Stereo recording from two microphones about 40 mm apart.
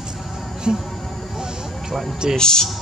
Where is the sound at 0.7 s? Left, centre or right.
Centre.